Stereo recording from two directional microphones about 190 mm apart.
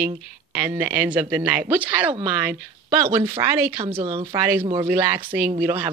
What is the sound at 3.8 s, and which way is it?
Speech, 30° right (ahead or behind).